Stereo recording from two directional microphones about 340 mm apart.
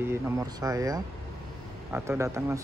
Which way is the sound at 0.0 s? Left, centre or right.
Centre.